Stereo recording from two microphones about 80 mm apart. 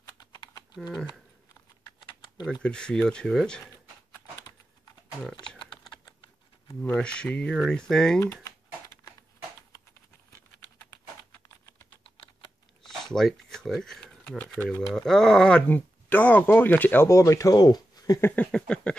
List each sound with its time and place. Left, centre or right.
2.6 s speech: centre
6.8 s speech: centre
12.8 s speech: centre
14.4 s speech: centre
14.9 s speech: centre
15.7 s speech: left
17.1 s speech: left
18.2 s speech: centre